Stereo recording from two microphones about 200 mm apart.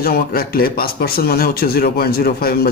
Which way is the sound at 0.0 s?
50° left (ahead or behind).